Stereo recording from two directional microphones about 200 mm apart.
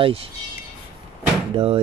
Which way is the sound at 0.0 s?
30° right (ahead or behind).